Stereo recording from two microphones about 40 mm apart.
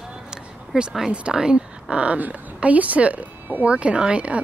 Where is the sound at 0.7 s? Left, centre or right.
Centre.